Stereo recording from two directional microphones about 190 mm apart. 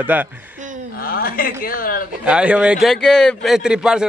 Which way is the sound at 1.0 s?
50° left (ahead or behind).